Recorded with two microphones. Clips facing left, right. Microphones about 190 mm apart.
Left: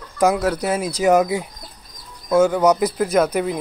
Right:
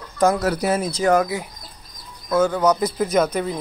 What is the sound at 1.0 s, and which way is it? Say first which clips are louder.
Speech: left 3 dB; 20° left (ahead or behind).